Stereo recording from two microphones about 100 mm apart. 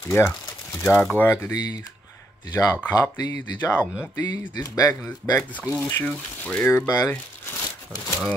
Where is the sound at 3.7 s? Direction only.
20° left (ahead or behind).